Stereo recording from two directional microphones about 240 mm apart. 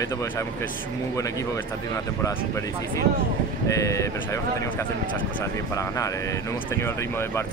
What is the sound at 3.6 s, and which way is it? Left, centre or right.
Speech, centre.